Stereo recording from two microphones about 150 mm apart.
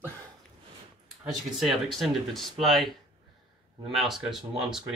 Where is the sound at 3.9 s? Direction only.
Centre (ahead or behind).